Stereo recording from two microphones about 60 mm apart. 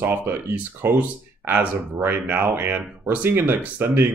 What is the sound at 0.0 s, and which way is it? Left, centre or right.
Speech, right.